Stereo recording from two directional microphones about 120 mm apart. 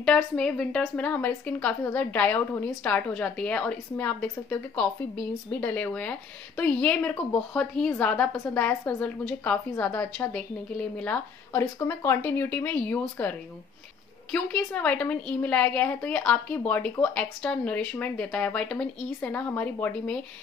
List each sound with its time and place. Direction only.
0.0 s a woman's voice: 5° left (ahead or behind)
11.8 s a woman's voice: 20° left (ahead or behind)